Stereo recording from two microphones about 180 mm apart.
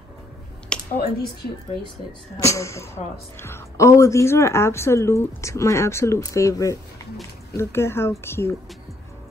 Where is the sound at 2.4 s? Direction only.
15° left (ahead or behind).